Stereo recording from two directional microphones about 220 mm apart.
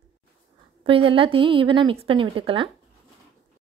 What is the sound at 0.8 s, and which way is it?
A woman's voice, 25° right (ahead or behind).